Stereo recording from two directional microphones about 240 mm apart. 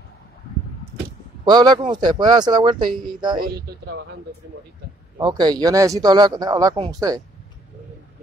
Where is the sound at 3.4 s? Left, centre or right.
Right.